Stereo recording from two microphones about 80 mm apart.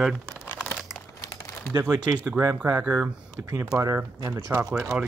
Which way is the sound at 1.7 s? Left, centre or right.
Right.